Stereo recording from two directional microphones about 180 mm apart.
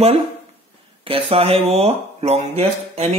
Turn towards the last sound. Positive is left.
turn(degrees=-35)  # may be behind; listen again after turning